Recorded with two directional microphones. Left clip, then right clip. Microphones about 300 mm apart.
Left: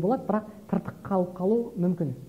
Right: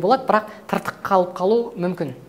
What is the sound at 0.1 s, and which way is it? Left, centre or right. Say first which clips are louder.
A woman's voice: right 11 dB; centre.